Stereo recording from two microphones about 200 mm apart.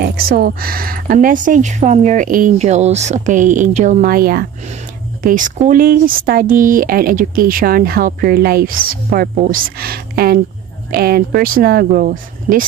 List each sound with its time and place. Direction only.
0.0 s speech: 50° right (ahead or behind)